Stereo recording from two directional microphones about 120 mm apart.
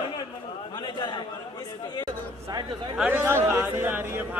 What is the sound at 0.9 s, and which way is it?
Speech, 40° left (ahead or behind).